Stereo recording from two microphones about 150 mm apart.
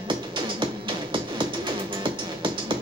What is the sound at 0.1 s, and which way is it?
Music, 35° right (ahead or behind).